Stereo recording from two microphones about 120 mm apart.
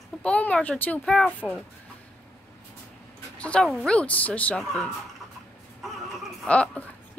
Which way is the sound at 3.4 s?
10° left (ahead or behind).